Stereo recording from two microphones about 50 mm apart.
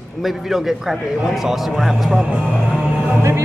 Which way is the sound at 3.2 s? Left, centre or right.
Right.